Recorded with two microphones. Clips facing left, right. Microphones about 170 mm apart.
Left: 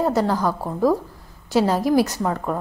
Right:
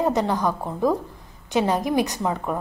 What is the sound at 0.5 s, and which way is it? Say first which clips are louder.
Speech: left 1 dB; 10° left (ahead or behind).